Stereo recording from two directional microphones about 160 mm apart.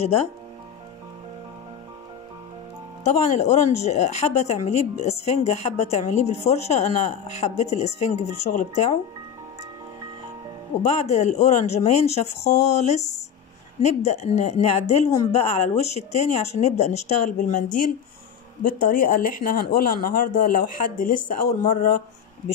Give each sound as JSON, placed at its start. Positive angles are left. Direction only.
{"t": 3.0, "sound": "speech", "side_deg": 45}
{"t": 10.8, "sound": "speech", "side_deg": 45}